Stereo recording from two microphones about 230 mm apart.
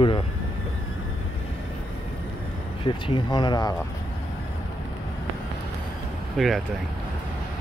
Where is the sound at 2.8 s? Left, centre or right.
Centre.